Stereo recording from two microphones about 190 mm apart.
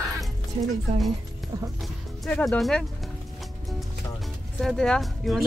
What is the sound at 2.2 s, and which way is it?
Speech, centre (ahead or behind).